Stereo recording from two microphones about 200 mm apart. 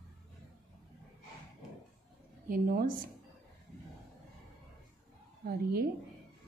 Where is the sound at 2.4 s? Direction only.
45° right (ahead or behind).